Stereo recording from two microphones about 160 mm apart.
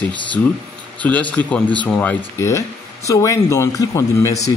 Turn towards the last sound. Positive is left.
turn(degrees=20)  # may be behind; listen again after turning